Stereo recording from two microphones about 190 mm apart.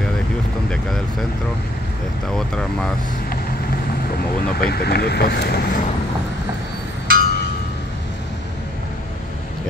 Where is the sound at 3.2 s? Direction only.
50° left (ahead or behind).